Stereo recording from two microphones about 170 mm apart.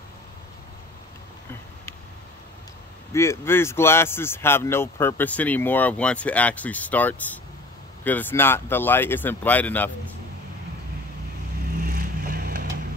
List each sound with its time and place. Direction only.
3.1 s speech: 15° left (ahead or behind)
11.8 s vehicle: 70° right (ahead or behind)